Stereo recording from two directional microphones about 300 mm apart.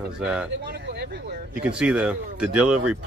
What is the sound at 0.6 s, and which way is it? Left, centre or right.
Speech, right.